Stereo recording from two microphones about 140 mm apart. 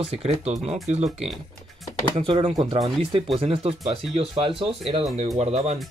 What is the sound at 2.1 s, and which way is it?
Speech, 40° right (ahead or behind).